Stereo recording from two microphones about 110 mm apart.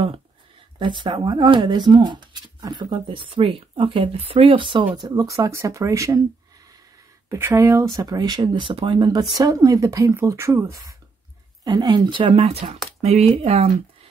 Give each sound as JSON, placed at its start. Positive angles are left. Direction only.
{"t": 0.7, "sound": "speech", "side_deg": -45}
{"t": 7.2, "sound": "speech", "side_deg": -25}
{"t": 11.6, "sound": "speech", "side_deg": -40}
{"t": 13.0, "sound": "speech", "side_deg": -80}